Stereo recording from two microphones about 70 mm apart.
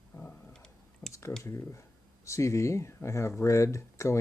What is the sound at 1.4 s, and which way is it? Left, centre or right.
Speech, left.